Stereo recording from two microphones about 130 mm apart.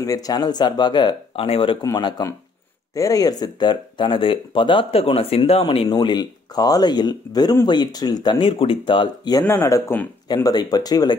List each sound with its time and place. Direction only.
0.0 s speech: 30° left (ahead or behind)
1.8 s speech: 30° left (ahead or behind); by 5.9 s 45° left (ahead or behind)
5.9 s speech: 35° left (ahead or behind)
9.4 s speech: 20° left (ahead or behind)
10.2 s speech: 30° left (ahead or behind)